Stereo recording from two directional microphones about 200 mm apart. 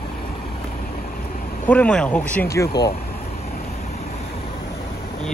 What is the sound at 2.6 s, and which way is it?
Speech, 20° left (ahead or behind).